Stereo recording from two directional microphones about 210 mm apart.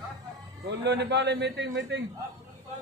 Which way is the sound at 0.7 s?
55° right (ahead or behind).